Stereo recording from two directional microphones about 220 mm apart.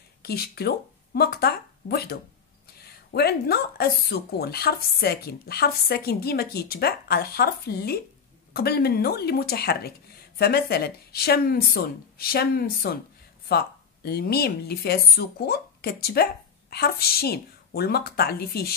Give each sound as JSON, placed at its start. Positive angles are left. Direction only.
{"t": 0.2, "sound": "speech", "side_deg": 45}